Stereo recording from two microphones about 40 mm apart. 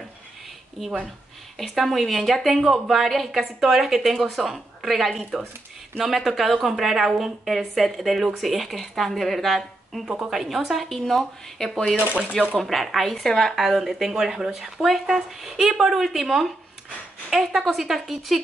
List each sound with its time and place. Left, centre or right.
1.6 s a woman's voice: centre
10.0 s a woman's voice: centre
10.3 s a woman's voice: centre
10.9 s speech: centre
12.2 s speech: centre
12.5 s a woman's voice: centre
13.6 s a woman's voice: centre